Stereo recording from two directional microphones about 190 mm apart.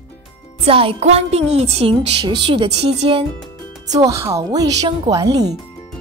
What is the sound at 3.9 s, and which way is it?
A woman's voice, 15° right (ahead or behind).